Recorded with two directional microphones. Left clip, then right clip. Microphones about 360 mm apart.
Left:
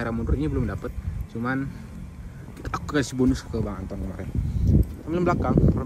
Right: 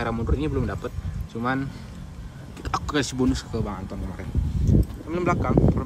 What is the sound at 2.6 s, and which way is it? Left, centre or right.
Speech, centre.